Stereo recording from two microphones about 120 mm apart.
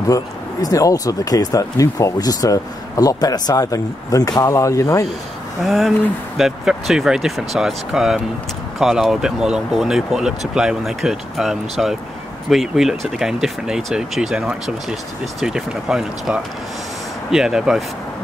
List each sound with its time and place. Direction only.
0.1 s speech: 30° left (ahead or behind)
5.6 s speech: centre (ahead or behind)